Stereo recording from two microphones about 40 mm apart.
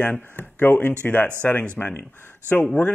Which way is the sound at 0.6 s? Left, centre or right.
Left.